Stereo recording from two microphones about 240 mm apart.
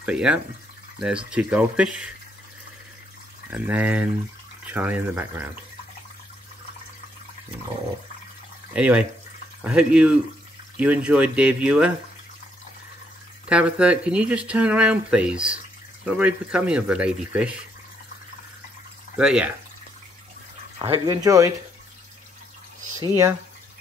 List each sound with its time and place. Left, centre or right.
0.0 s speech: centre
3.4 s speech: centre
8.7 s speech: centre
13.5 s speech: centre
19.1 s speech: centre
20.8 s speech: centre
22.9 s speech: centre